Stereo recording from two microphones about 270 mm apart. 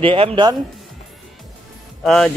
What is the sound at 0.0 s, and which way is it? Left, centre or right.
Speech, centre.